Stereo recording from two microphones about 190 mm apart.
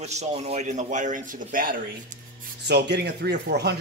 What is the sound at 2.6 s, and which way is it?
Speech, 60° right (ahead or behind).